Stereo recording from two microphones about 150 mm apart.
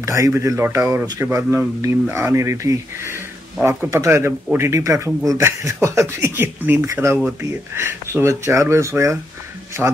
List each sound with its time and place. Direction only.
0.0 s speech: 20° right (ahead or behind)